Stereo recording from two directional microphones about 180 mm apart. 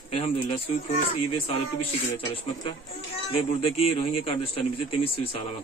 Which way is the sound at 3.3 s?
30° left (ahead or behind).